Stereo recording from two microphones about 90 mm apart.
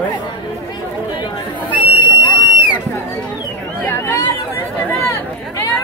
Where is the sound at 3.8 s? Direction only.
30° left (ahead or behind).